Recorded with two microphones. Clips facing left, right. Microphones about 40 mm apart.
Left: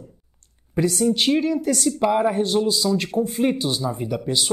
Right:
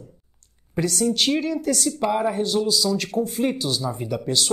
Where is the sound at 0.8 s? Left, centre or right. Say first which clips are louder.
Left 2 dB; left.